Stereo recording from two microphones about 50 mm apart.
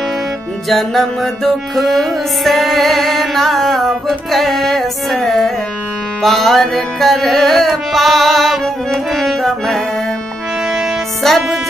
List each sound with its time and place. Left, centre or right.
0.7 s music: centre
11.2 s music: centre